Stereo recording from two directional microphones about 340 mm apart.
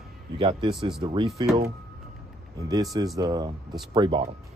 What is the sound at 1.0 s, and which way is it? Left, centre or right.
Speech, centre.